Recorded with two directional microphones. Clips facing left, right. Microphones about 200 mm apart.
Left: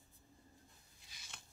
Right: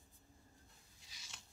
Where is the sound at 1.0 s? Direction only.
55° left (ahead or behind).